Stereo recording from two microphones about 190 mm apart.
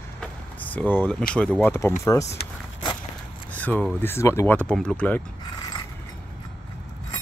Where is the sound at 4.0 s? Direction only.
15° left (ahead or behind).